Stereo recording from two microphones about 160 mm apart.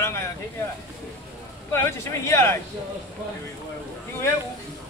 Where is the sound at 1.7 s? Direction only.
15° left (ahead or behind).